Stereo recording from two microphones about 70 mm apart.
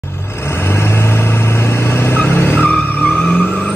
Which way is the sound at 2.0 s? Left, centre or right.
Left.